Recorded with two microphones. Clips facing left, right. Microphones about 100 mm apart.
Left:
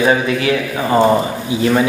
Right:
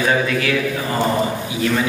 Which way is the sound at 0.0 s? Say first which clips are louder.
Left 4 dB; 25° left (ahead or behind).